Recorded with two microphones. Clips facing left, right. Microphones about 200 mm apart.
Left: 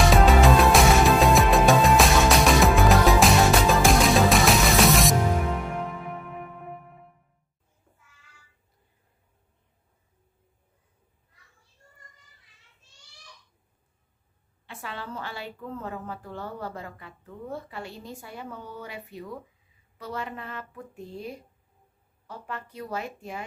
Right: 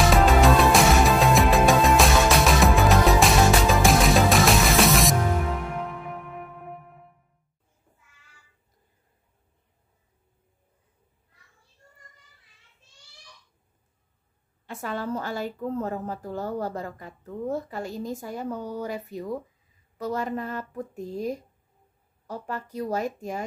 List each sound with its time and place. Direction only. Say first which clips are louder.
0.0 s music: even; centre (ahead or behind)
14.7 s a woman's voice: right 8 dB; 45° right (ahead or behind)